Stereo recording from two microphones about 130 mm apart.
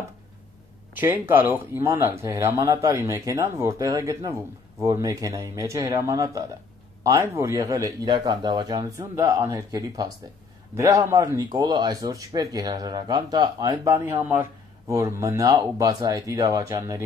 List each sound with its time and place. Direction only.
0.9 s speech: 15° right (ahead or behind)